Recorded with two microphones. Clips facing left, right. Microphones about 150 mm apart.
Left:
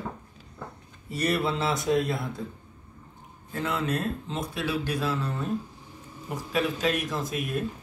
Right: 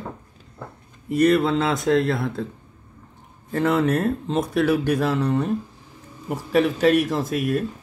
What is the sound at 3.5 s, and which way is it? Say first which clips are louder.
Speech: right 9 dB; 85° right.